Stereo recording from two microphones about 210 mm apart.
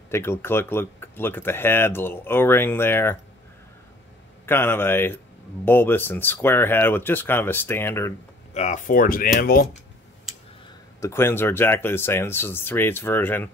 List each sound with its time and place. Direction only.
0.1 s speech: 10° left (ahead or behind)
4.5 s speech: 10° left (ahead or behind)
8.5 s speech: 35° left (ahead or behind)
11.0 s speech: 10° left (ahead or behind)